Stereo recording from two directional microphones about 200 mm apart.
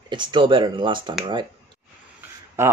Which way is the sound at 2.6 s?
15° right (ahead or behind).